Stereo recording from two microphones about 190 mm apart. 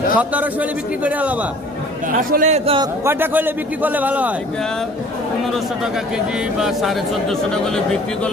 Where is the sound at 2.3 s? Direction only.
40° right (ahead or behind).